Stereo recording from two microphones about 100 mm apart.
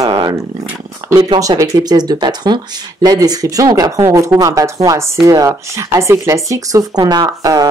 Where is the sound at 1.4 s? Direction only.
35° right (ahead or behind).